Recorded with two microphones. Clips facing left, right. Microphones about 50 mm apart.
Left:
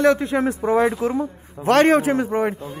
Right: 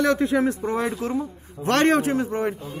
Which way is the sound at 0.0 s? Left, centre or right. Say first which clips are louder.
Left 3 dB; centre.